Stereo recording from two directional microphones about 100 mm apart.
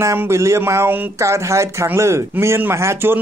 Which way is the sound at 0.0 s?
30° right (ahead or behind).